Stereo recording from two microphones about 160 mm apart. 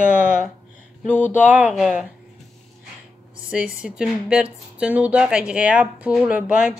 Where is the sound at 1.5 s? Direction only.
5° right (ahead or behind).